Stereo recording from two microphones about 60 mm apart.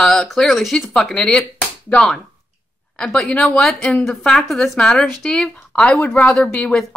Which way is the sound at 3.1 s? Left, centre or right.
Centre.